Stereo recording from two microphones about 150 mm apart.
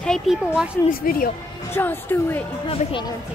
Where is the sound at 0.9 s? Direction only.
75° left (ahead or behind).